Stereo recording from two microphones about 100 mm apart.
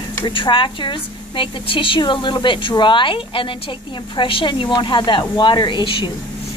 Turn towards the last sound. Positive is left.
turn(degrees=50)  # may be behind; listen again after turning